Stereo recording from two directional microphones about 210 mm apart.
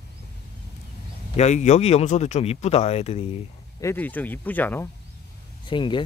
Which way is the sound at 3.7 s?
10° left (ahead or behind).